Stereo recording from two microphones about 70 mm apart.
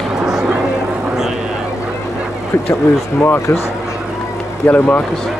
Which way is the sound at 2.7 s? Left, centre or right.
Left.